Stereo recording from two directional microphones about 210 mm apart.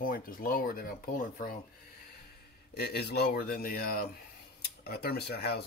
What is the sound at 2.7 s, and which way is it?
Speech, 50° left (ahead or behind).